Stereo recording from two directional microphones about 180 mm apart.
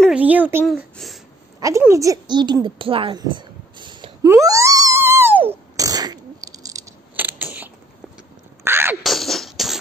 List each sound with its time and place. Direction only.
0.0 s speech: 5° right (ahead or behind)
0.7 s speech: centre (ahead or behind)
1.6 s a woman's voice: 15° right (ahead or behind)
4.3 s a sound: 15° right (ahead or behind)
9.0 s music: centre (ahead or behind)